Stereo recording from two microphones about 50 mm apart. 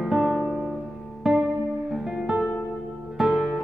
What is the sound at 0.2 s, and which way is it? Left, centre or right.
Music, centre.